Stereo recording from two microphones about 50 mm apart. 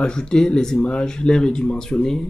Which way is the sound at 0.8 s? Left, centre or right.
Left.